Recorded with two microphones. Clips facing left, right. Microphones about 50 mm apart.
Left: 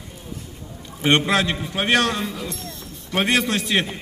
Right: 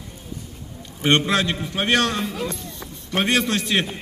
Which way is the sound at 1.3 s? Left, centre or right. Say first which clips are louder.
Left 1 dB; centre.